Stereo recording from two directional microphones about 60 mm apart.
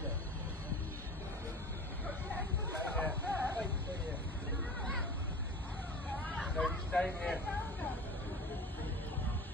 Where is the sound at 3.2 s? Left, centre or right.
Left.